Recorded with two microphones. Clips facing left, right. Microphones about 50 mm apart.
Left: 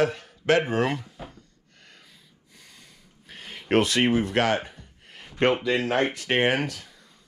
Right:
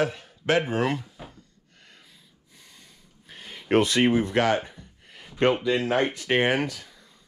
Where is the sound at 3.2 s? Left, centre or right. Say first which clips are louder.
Even; left.